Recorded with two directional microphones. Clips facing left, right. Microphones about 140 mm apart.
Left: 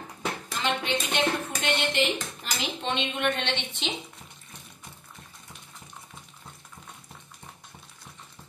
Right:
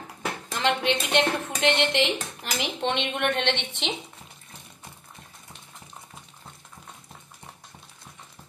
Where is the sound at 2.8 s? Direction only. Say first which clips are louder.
Right 2 dB; 65° right (ahead or behind).